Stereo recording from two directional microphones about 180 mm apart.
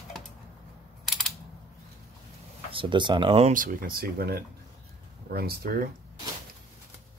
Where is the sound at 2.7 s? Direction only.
30° right (ahead or behind).